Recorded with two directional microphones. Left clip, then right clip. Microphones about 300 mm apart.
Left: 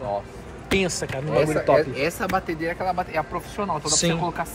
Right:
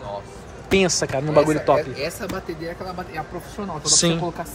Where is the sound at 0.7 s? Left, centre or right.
Centre.